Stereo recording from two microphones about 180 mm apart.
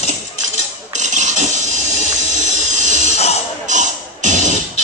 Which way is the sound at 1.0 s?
40° right (ahead or behind).